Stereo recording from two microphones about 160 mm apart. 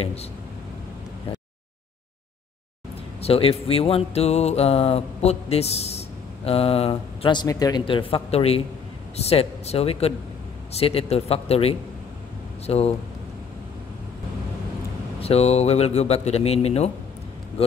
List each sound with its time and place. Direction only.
0.0 s speech: 40° left (ahead or behind)
3.2 s speech: 40° left (ahead or behind)
15.1 s speech: 40° left (ahead or behind)